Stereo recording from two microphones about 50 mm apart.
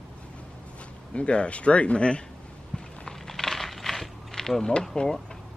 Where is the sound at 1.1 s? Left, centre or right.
Left.